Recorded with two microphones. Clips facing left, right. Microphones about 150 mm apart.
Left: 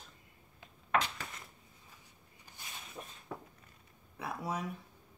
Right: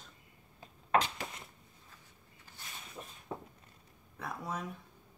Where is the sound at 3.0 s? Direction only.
5° left (ahead or behind).